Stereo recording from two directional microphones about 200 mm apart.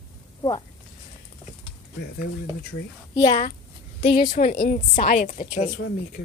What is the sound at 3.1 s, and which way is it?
Speech, 25° left (ahead or behind).